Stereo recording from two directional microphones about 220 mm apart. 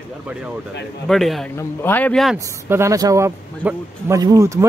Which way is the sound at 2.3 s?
15° right (ahead or behind).